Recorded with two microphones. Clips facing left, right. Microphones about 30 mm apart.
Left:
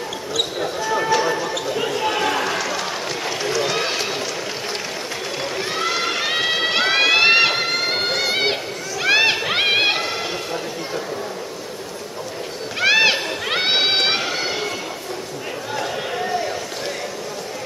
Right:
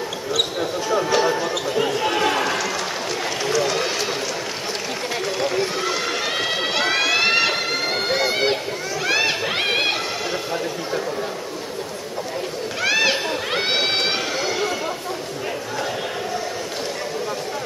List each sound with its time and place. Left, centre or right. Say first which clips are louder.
0.3 s speech: right 1 dB; centre
1.4 s basketball bounce: right 1 dB; centre
3.5 s run: right 1 dB; centre
5.6 s run: even; centre
8.3 s a sound: even; centre
9.4 s run: left 3 dB; centre
12.8 s a sound: left 4 dB; left